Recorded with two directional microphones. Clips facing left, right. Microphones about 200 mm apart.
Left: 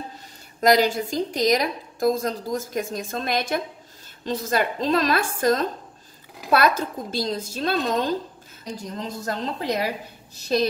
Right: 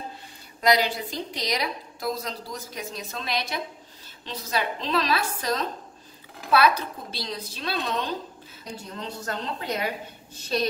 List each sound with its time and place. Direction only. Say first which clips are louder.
0.6 s a woman's voice: left 4 dB; 45° left (ahead or behind)